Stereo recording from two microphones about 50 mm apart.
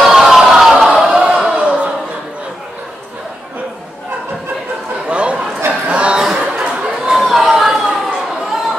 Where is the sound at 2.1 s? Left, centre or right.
Right.